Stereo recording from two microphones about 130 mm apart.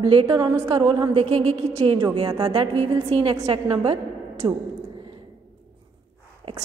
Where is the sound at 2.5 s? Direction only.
45° right (ahead or behind).